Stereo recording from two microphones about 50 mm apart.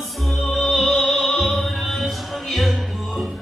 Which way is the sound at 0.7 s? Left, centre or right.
Centre.